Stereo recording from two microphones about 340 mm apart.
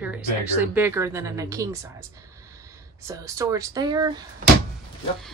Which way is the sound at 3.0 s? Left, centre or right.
Centre.